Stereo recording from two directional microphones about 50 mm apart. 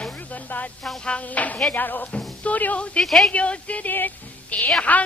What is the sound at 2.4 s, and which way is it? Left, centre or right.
Speech, left.